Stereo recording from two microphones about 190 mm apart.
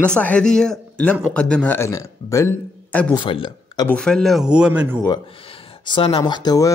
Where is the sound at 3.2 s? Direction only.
25° left (ahead or behind).